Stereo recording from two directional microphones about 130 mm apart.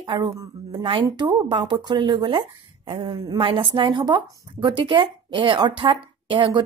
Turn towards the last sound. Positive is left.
turn(degrees=-40)  # may be behind; listen again after turning